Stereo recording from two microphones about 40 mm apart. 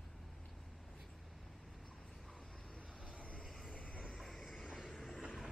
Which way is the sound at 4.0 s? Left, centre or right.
Centre.